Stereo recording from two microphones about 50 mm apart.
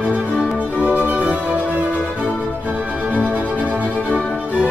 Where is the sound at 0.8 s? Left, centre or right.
Right.